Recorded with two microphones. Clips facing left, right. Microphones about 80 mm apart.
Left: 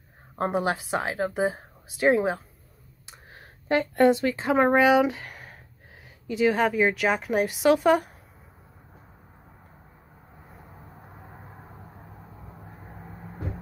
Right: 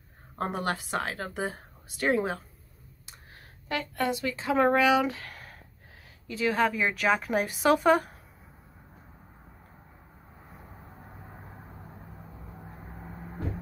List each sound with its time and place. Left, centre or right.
0.4 s a woman's voice: centre
3.1 s a woman's voice: left; by 8.1 s centre